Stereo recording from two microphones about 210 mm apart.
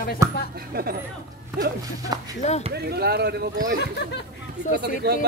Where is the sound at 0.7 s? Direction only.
45° right (ahead or behind).